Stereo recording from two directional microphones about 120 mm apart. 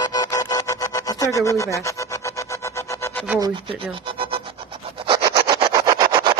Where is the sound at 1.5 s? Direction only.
25° left (ahead or behind).